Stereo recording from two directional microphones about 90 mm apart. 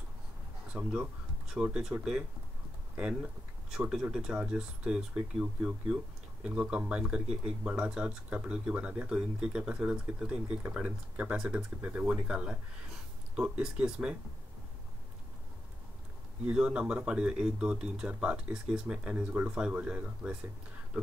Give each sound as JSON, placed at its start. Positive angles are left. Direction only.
{"t": 0.7, "sound": "speech", "side_deg": -5}
{"t": 16.4, "sound": "speech", "side_deg": -10}